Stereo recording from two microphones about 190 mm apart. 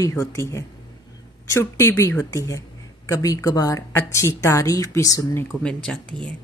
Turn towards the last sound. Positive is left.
turn(degrees=5)  # may be behind; listen again after turning